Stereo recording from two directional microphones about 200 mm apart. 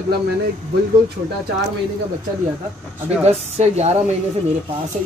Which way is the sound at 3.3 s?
35° right (ahead or behind).